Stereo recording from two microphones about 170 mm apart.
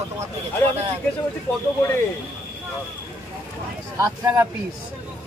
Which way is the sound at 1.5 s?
15° left (ahead or behind).